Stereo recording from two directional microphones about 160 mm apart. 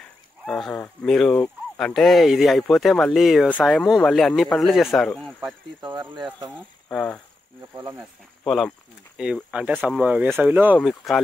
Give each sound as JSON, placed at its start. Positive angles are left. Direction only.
{"t": 0.5, "sound": "speech", "side_deg": 5}
{"t": 5.8, "sound": "speech", "side_deg": -30}
{"t": 6.9, "sound": "speech", "side_deg": 10}
{"t": 7.7, "sound": "speech", "side_deg": -20}
{"t": 8.5, "sound": "speech", "side_deg": 0}
{"t": 10.8, "sound": "speech", "side_deg": 0}